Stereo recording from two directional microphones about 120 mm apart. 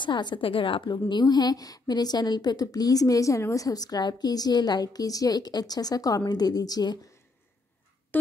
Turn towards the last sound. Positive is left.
turn(degrees=35)  # may be behind; listen again after turning